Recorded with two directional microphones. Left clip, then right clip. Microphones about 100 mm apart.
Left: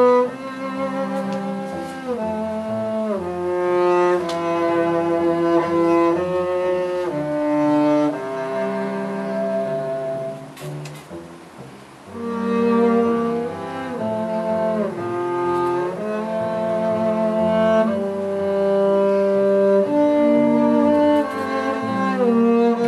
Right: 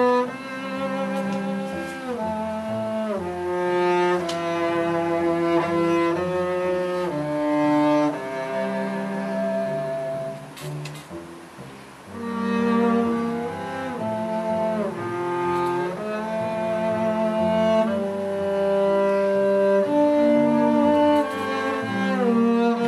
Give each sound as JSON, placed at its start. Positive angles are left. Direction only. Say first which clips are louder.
{"t": 3.4, "sound": "music", "louder": "left 4 dB", "side_deg": -10}
{"t": 12.4, "sound": "music", "louder": "left 4 dB", "side_deg": -5}
{"t": 15.1, "sound": "cello", "louder": "left 3 dB", "side_deg": -10}
{"t": 18.4, "sound": "music", "louder": "left 3 dB", "side_deg": -5}